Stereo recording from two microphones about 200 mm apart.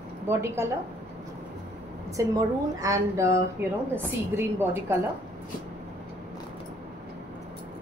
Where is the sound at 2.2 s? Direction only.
15° right (ahead or behind).